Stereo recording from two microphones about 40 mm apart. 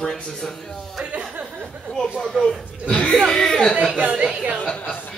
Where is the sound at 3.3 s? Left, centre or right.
Centre.